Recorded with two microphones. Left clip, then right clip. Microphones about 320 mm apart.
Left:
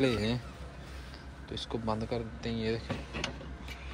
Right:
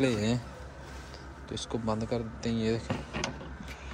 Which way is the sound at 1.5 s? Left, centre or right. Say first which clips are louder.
Right 2 dB; centre.